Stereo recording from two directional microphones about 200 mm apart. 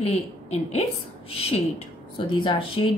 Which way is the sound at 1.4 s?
30° left (ahead or behind).